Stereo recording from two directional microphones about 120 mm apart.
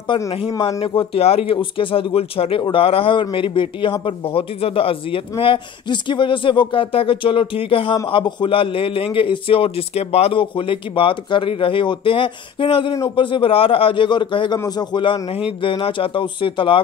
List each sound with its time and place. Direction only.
0.1 s a man's voice: 45° left (ahead or behind)